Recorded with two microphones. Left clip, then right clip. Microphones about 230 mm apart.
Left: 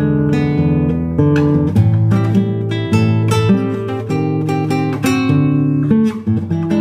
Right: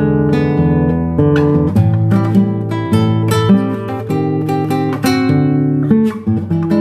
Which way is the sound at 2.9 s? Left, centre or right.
Centre.